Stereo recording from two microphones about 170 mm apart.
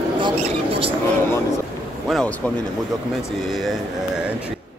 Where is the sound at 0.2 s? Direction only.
35° right (ahead or behind).